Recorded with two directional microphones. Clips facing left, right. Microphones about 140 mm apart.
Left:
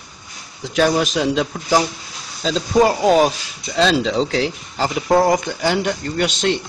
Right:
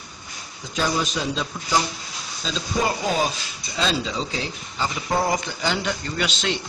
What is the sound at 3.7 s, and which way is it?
Speech, 75° left (ahead or behind).